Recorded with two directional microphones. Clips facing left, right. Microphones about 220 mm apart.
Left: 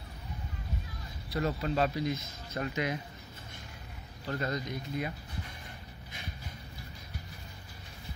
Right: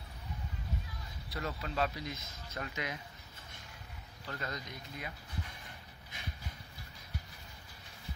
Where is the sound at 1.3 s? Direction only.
35° left (ahead or behind).